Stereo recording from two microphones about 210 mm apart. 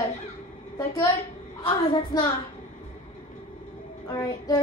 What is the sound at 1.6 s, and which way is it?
Speech, 20° left (ahead or behind).